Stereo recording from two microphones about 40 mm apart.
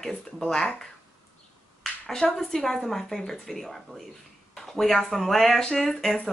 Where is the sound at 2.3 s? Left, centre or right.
Centre.